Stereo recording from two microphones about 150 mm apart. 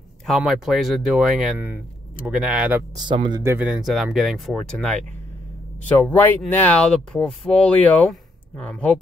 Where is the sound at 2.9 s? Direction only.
30° right (ahead or behind).